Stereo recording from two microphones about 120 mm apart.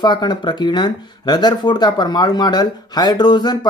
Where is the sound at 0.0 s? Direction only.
40° left (ahead or behind).